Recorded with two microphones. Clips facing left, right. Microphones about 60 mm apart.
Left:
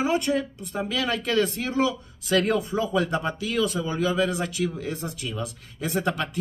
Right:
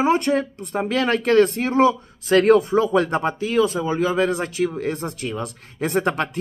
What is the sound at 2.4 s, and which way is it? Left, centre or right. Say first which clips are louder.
Speech: right 9 dB; right.